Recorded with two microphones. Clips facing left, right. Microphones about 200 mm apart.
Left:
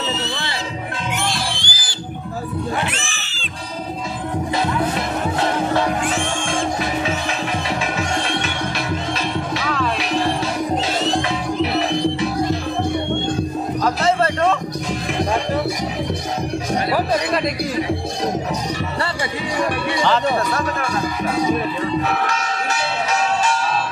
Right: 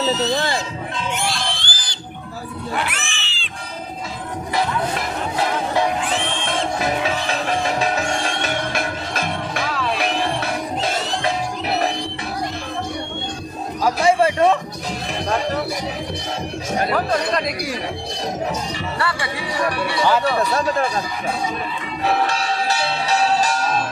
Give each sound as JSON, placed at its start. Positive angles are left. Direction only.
{"t": 0.0, "sound": "music", "side_deg": -40}
{"t": 1.4, "sound": "a sound", "side_deg": 10}
{"t": 2.8, "sound": "cat", "side_deg": 25}
{"t": 3.1, "sound": "music", "side_deg": 40}
{"t": 6.1, "sound": "music", "side_deg": 45}
{"t": 7.6, "sound": "music", "side_deg": -40}
{"t": 13.8, "sound": "music", "side_deg": -10}
{"t": 22.2, "sound": "music", "side_deg": -30}